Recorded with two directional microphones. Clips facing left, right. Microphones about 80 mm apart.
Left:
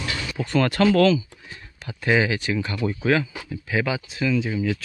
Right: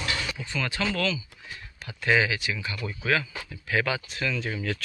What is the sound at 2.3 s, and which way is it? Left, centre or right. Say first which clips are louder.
Speech: left 7 dB; left.